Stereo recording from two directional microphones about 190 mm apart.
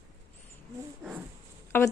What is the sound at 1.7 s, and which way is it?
Speech, 10° left (ahead or behind).